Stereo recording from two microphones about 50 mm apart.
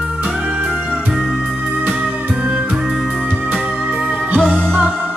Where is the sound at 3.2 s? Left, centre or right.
Right.